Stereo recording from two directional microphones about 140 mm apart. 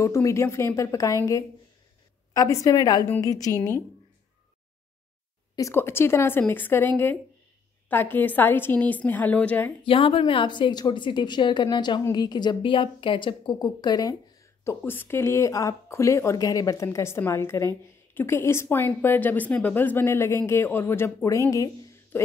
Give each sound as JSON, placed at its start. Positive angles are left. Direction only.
{"t": 0.0, "sound": "a woman's voice", "side_deg": 20}
{"t": 5.6, "sound": "a woman's voice", "side_deg": 20}
{"t": 7.9, "sound": "a woman's voice", "side_deg": 15}
{"t": 9.8, "sound": "a woman's voice", "side_deg": 40}